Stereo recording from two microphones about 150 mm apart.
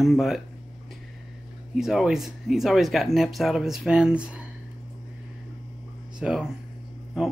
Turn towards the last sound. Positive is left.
turn(degrees=-5)  # may be behind; listen again after turning